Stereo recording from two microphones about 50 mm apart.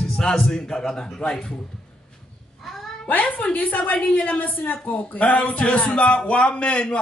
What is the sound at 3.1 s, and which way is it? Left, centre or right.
A woman's voice, left.